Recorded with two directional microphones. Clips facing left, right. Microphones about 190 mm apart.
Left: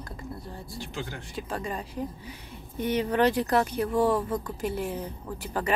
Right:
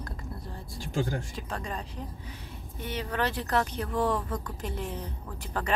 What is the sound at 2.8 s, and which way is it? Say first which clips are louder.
Speech: left 8 dB; 20° left (ahead or behind).